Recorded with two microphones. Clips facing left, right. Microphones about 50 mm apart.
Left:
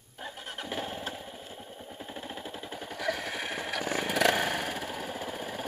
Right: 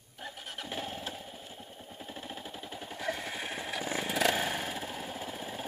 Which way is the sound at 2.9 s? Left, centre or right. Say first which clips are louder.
Left 3 dB; left.